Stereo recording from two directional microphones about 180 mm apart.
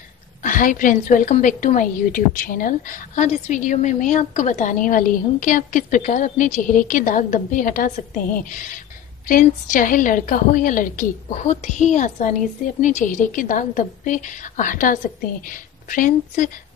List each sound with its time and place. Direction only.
0.4 s a woman's voice: 45° left (ahead or behind)